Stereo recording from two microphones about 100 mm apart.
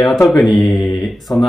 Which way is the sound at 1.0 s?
Centre (ahead or behind).